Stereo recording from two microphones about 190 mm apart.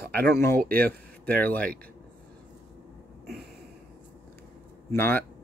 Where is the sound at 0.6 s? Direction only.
50° right (ahead or behind).